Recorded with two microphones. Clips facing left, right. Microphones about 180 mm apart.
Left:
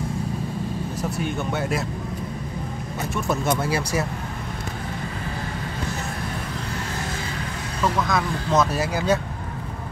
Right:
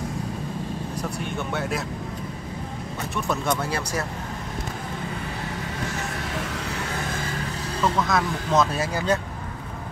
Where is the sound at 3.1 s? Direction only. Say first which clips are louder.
Left 2 dB; centre (ahead or behind).